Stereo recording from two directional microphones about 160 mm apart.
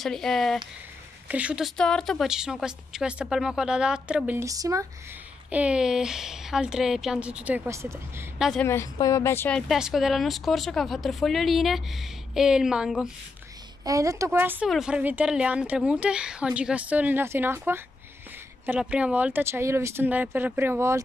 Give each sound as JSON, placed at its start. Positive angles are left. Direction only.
{"t": 0.0, "sound": "a woman's voice", "side_deg": 0}
{"t": 4.4, "sound": "speech", "side_deg": -20}
{"t": 5.5, "sound": "a woman's voice", "side_deg": -5}
{"t": 8.4, "sound": "a woman's voice", "side_deg": 0}
{"t": 8.6, "sound": "a woman's voice", "side_deg": 20}
{"t": 13.8, "sound": "speech", "side_deg": -20}